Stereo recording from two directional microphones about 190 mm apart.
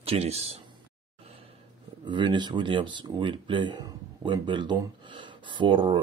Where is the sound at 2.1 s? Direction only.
25° right (ahead or behind).